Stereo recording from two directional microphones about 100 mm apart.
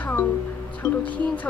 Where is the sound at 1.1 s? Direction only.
15° left (ahead or behind).